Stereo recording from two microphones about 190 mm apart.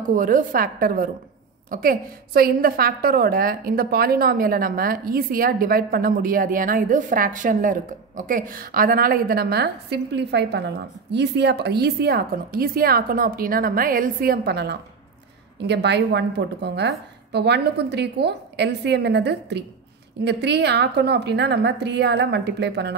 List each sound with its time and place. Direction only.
0.1 s a woman's voice: 45° right (ahead or behind); by 22.9 s 65° right (ahead or behind)